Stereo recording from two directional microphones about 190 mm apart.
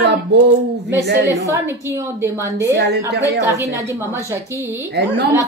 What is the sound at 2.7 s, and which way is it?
Speech, 65° right (ahead or behind).